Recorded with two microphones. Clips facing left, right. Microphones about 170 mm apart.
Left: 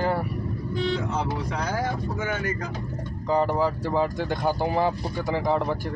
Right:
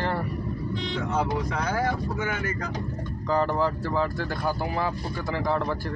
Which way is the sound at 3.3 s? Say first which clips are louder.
Left 2 dB; 10° left (ahead or behind).